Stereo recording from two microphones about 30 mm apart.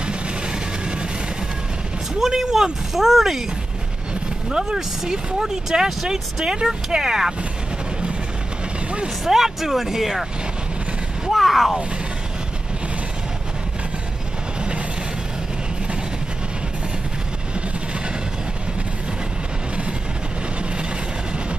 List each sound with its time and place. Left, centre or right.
0.0 s music: right
2.1 s speech: centre
4.5 s speech: centre
9.2 s speech: centre
11.2 s a sound: centre